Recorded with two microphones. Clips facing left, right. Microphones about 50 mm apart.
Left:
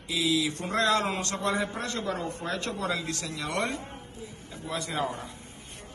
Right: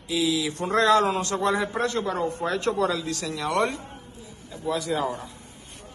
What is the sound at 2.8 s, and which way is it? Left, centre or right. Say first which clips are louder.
Speech: right 5 dB; left.